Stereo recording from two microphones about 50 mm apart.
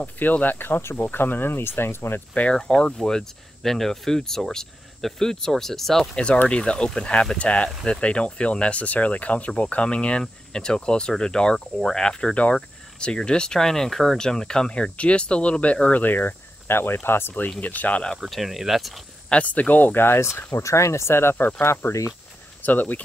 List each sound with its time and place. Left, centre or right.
0.0 s speech: left
2.5 s speech: centre
6.1 s speech: centre
16.0 s speech: left
16.7 s speech: left
17.6 s speech: left
18.2 s speech: centre
19.4 s speech: left
20.5 s speech: left
21.6 s speech: left
22.6 s speech: left